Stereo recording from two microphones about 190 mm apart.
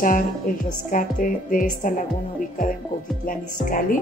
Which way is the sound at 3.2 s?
45° left (ahead or behind).